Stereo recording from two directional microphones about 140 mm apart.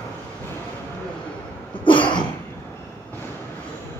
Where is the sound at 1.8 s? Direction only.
35° left (ahead or behind).